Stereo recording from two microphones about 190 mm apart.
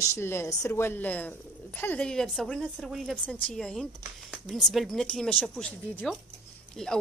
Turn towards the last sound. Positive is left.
turn(degrees=5)  # may be behind; listen again after turning